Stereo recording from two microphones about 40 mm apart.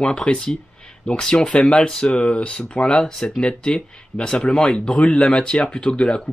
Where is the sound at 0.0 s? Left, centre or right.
Left.